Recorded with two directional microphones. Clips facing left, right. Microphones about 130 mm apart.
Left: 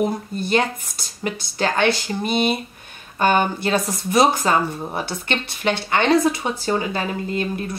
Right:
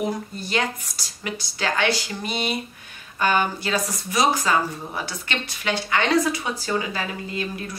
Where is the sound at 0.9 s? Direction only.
50° left (ahead or behind).